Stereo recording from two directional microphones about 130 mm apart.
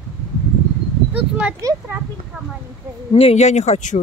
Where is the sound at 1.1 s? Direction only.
10° right (ahead or behind).